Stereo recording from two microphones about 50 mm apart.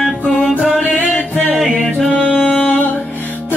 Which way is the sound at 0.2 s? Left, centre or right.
Left.